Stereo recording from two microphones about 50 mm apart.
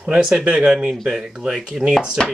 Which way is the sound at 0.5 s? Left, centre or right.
Centre.